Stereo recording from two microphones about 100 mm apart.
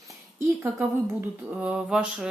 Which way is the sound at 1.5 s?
10° right (ahead or behind).